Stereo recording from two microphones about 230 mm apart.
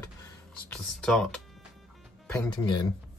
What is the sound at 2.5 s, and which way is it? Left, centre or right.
Speech, centre.